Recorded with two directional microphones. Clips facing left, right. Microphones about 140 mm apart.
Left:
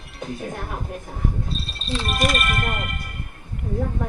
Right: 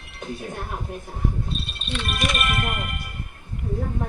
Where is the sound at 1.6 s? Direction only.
35° left (ahead or behind).